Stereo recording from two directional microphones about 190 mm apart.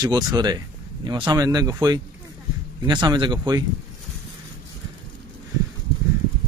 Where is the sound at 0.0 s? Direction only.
20° right (ahead or behind).